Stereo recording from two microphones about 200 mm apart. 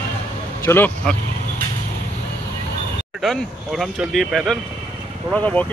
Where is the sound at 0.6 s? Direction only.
10° left (ahead or behind).